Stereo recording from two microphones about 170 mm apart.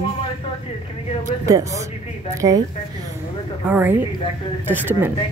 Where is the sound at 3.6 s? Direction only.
10° right (ahead or behind).